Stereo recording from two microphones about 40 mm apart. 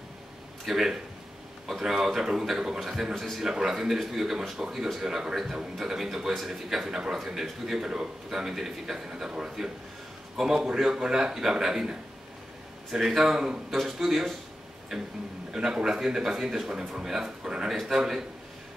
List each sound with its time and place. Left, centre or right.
0.7 s speech: centre
5.3 s a man's voice: centre
13.0 s a man's voice: centre
15.5 s speech: centre
17.6 s a man's voice: centre